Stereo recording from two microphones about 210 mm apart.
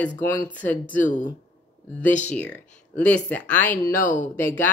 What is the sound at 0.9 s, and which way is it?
Speech, 40° left (ahead or behind).